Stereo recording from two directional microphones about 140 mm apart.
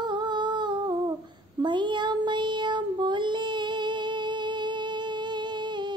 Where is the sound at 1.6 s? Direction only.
35° right (ahead or behind).